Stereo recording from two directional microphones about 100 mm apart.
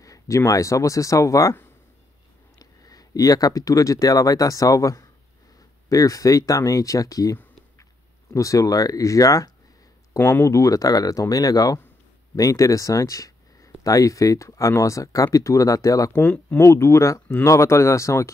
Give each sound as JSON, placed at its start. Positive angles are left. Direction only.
{"t": 0.0, "sound": "speech", "side_deg": 30}
{"t": 10.1, "sound": "speech", "side_deg": 25}
{"t": 16.1, "sound": "speech", "side_deg": 15}
{"t": 16.6, "sound": "speech", "side_deg": 25}